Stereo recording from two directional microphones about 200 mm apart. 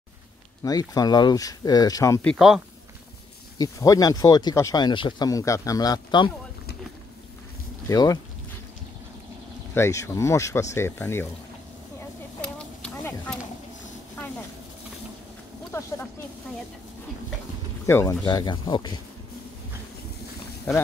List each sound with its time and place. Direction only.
0.7 s speech: 20° left (ahead or behind)
2.3 s speech: centre (ahead or behind)
3.5 s speech: 15° left (ahead or behind)
7.9 s speech: 20° left (ahead or behind)
9.8 s speech: 15° left (ahead or behind)
12.4 s clip-clop: 5° left (ahead or behind)
17.8 s speech: 15° left (ahead or behind)